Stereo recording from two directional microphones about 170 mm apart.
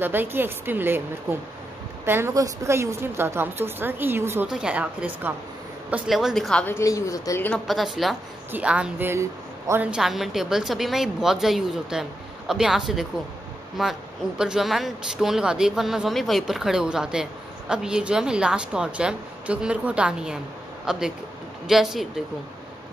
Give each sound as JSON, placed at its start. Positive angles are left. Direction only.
{"t": 0.0, "sound": "a woman's voice", "side_deg": -10}
{"t": 2.0, "sound": "a woman's voice", "side_deg": -15}
{"t": 6.6, "sound": "a woman's voice", "side_deg": 15}
{"t": 7.6, "sound": "speech", "side_deg": 0}